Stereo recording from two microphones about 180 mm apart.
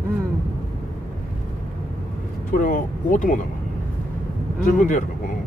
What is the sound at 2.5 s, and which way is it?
Speech, 45° left (ahead or behind).